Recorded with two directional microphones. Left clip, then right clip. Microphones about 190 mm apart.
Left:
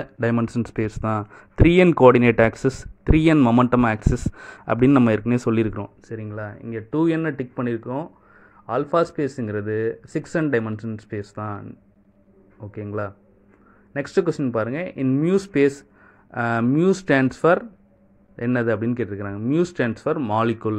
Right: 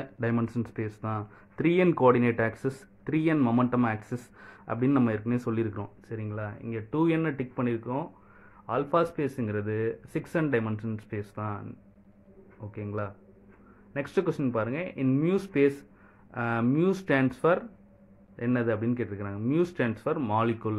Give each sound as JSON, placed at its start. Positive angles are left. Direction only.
{"t": 0.0, "sound": "speech", "side_deg": 40}
{"t": 12.7, "sound": "speech", "side_deg": 35}